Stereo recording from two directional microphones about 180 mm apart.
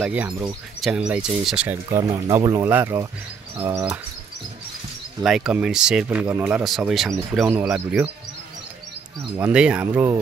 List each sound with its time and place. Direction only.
0.0 s speech: 10° right (ahead or behind)
0.3 s speech: 25° right (ahead or behind)
0.7 s speech: 5° right (ahead or behind)
1.9 s speech: 15° right (ahead or behind)
5.2 s speech: 5° right (ahead or behind)
9.4 s speech: 5° right (ahead or behind)